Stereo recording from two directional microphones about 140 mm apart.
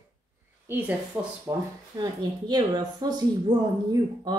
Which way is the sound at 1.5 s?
15° right (ahead or behind).